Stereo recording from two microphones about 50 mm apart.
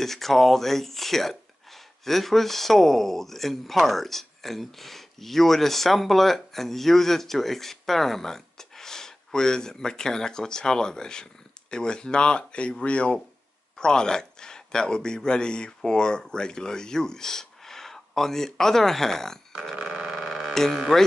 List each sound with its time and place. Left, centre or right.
0.0 s speech: centre
19.7 s a sound: centre
20.5 s speech: centre